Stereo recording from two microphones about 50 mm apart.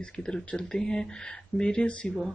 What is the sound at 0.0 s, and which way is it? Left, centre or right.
Speech, centre.